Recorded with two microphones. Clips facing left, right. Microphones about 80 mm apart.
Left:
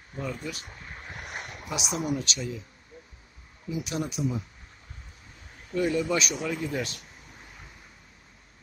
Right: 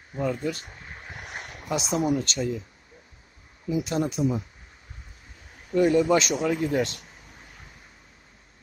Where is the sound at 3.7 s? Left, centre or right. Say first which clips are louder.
Right 6 dB; right.